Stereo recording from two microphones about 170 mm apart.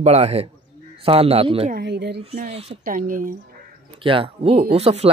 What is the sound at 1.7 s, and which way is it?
Speech, 80° right.